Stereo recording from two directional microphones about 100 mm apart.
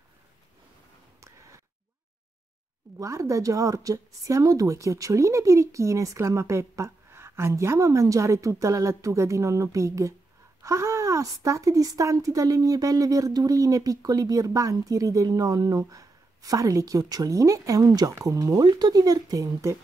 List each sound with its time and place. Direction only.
3.0 s speech: 30° right (ahead or behind)